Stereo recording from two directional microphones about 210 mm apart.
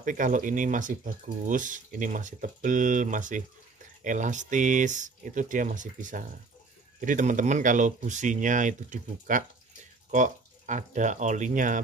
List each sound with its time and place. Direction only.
0.0 s speech: 40° right (ahead or behind)